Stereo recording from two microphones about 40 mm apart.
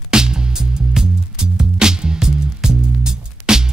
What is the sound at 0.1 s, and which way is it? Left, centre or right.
Music, centre.